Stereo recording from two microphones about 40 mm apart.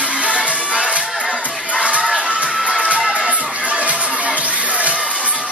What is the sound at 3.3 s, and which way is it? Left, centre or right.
Music, right.